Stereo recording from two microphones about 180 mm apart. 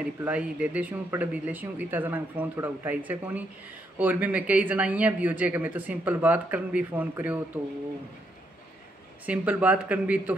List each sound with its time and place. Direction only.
0.2 s speech: 5° right (ahead or behind)
9.2 s speech: 10° right (ahead or behind)